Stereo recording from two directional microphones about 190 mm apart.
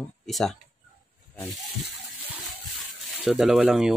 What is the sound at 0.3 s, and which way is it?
Speech, centre (ahead or behind).